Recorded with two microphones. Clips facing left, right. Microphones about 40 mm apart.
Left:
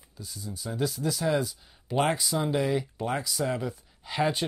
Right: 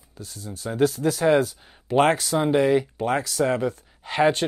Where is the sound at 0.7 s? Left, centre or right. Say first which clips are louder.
Right 8 dB; right.